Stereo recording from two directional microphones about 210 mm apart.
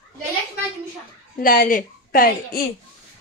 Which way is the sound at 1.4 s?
40° left (ahead or behind).